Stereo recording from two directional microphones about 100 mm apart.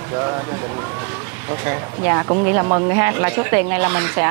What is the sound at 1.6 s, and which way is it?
Speech, 30° right (ahead or behind).